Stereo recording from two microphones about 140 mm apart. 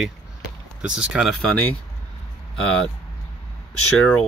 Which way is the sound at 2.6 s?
5° left (ahead or behind).